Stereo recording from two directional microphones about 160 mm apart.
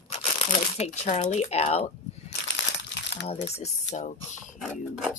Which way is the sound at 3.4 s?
40° left (ahead or behind).